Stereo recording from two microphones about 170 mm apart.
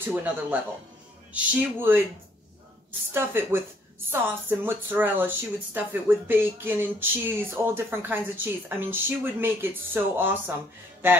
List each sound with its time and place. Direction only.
0.0 s speech: 10° right (ahead or behind)
3.1 s speech: 15° right (ahead or behind)